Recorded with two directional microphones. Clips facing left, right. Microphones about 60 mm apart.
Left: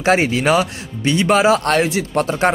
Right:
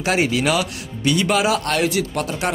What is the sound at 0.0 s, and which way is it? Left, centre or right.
Speech, left.